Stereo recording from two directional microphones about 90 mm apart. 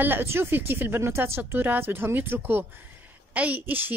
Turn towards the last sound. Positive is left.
turn(degrees=-20)  # may be behind; listen again after turning